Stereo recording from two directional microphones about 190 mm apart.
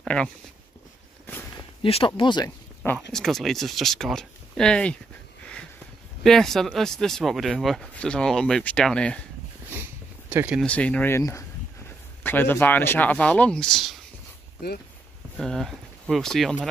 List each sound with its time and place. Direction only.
0.0 s speech: 5° left (ahead or behind)
1.8 s speech: 30° left (ahead or behind)
2.8 s speech: 5° left (ahead or behind)
6.2 s speech: centre (ahead or behind)
10.3 s speech: 10° right (ahead or behind)
10.6 s speech: 5° left (ahead or behind)
15.3 s speech: centre (ahead or behind)